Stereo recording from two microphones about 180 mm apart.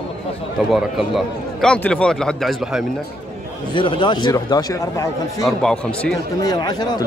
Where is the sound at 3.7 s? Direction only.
25° left (ahead or behind).